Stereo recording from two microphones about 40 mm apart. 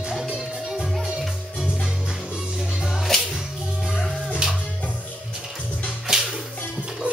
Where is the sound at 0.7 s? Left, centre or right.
Centre.